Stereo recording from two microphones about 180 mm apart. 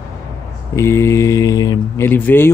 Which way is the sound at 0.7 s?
15° left (ahead or behind).